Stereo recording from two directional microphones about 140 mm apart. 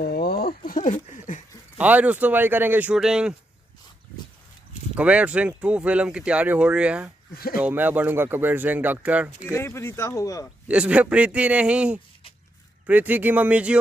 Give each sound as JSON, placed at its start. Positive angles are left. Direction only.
{"t": 0.0, "sound": "speech", "side_deg": 90}
{"t": 1.8, "sound": "speech", "side_deg": -10}
{"t": 4.9, "sound": "speech", "side_deg": -10}
{"t": 7.3, "sound": "speech", "side_deg": 90}
{"t": 7.6, "sound": "speech", "side_deg": -15}
{"t": 9.5, "sound": "speech", "side_deg": 20}
{"t": 10.7, "sound": "speech", "side_deg": -10}